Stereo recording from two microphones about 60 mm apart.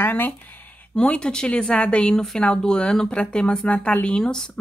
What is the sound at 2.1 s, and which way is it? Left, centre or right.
Speech, centre.